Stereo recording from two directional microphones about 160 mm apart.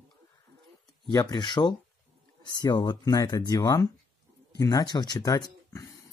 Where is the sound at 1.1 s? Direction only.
25° left (ahead or behind).